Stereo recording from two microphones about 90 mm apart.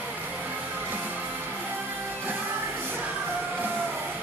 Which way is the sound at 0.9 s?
20° right (ahead or behind).